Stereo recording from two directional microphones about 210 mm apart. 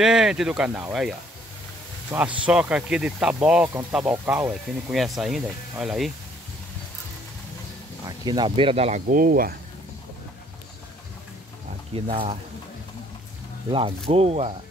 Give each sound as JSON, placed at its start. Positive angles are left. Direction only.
{"t": 0.0, "sound": "speech", "side_deg": -5}
{"t": 8.0, "sound": "speech", "side_deg": -20}
{"t": 9.0, "sound": "speech", "side_deg": -40}
{"t": 11.9, "sound": "speech", "side_deg": -25}
{"t": 13.7, "sound": "speech", "side_deg": -25}